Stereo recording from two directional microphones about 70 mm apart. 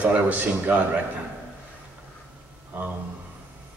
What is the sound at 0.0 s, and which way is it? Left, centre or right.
A man's voice, right.